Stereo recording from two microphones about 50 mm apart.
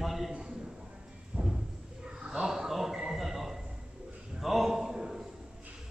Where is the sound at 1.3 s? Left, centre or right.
Right.